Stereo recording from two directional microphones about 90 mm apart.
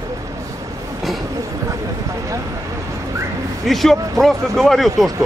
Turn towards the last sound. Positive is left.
turn(degrees=0)  # may be behind; listen again after turning